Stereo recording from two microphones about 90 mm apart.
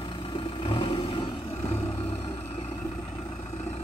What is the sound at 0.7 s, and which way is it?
Vehicle, 65° left (ahead or behind).